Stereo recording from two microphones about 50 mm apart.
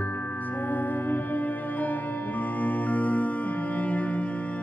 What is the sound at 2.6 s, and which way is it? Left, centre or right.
Music, left.